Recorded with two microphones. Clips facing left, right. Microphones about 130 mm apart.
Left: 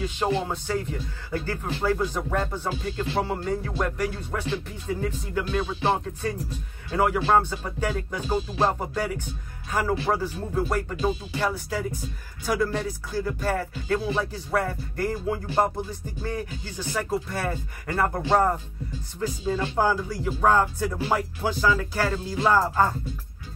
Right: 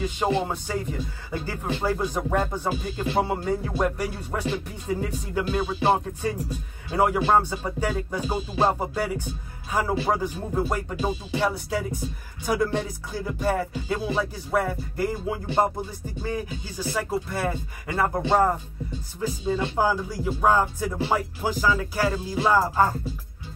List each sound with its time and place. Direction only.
0.3 s speech: 10° right (ahead or behind)